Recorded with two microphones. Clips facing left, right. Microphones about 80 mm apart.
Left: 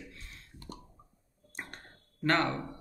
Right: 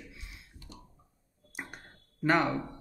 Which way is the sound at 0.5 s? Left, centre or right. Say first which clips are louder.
Left 7 dB; left.